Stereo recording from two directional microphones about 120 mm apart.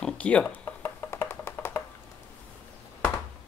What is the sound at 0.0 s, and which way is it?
Music, 10° left (ahead or behind).